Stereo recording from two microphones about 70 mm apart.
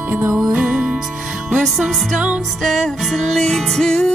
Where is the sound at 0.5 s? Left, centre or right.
Centre.